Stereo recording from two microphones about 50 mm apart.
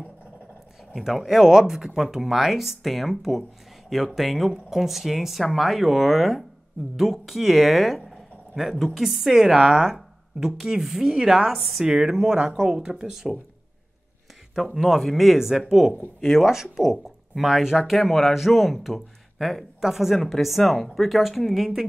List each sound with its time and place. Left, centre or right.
0.9 s a woman's voice: centre
9.6 s speech: centre
10.4 s speech: centre
14.5 s speech: centre